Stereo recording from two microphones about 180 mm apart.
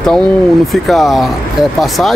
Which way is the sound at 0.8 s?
Centre (ahead or behind).